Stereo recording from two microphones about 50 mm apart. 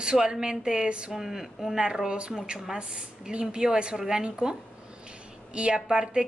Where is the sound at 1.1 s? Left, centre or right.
Centre.